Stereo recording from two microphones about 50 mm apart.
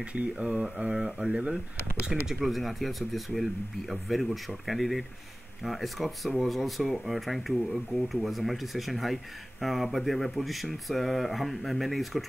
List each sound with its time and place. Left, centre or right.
0.0 s speech: right; by 12.3 s centre